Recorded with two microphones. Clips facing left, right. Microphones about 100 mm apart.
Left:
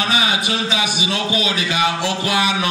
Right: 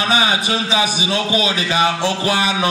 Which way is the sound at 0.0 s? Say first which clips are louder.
Right 2 dB; 30° right (ahead or behind).